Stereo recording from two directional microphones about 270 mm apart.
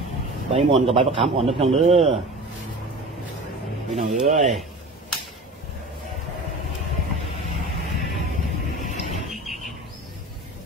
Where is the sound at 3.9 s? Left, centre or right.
Right.